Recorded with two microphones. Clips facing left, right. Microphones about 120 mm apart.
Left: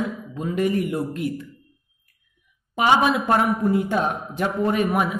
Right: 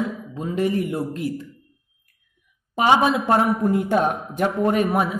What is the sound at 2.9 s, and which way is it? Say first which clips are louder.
Speech: right 1 dB; 25° right (ahead or behind).